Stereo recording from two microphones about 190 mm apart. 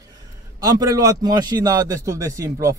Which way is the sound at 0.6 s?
20° right (ahead or behind).